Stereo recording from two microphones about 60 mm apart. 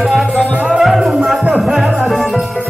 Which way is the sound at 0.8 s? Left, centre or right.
Centre.